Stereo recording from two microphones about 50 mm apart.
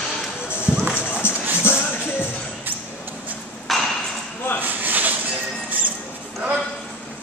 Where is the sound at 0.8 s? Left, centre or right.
Centre.